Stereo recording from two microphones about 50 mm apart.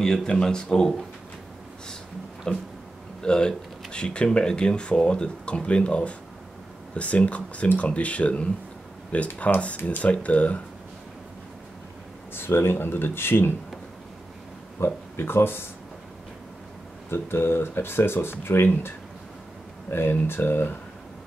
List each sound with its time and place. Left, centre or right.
0.0 s speech: centre
2.5 s speech: centre
12.4 s speech: left
14.8 s speech: left
17.1 s speech: left